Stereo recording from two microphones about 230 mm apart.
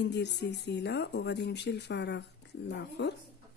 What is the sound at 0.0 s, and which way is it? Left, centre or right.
Speech, left.